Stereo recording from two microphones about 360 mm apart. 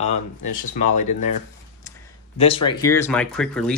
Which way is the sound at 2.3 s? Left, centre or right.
Centre.